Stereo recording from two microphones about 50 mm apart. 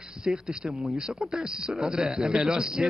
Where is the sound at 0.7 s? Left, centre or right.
Centre.